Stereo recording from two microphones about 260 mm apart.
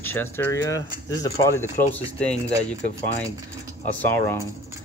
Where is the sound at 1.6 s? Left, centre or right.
Left.